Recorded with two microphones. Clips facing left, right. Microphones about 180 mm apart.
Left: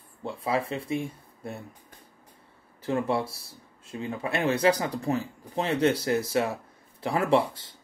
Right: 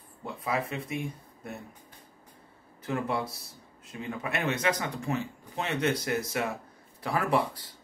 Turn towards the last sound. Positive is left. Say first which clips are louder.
# left 4 dB
turn(degrees=25)  # may be behind; listen again after turning